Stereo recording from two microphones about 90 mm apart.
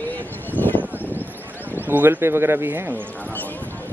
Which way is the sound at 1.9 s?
25° right (ahead or behind).